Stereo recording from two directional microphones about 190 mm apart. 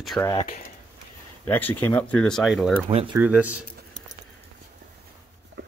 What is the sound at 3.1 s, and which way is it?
Speech, 5° right (ahead or behind).